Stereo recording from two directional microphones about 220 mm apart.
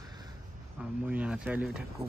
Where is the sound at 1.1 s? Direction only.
5° right (ahead or behind).